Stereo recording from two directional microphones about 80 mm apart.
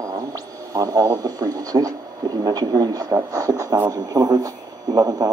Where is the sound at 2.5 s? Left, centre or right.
Right.